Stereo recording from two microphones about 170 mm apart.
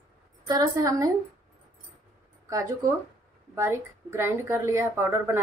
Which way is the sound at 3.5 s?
15° right (ahead or behind).